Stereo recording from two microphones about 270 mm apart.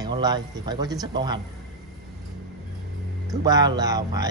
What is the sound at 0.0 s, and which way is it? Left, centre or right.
A man's voice, centre.